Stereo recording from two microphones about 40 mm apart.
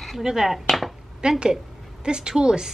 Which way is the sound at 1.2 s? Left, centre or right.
Right.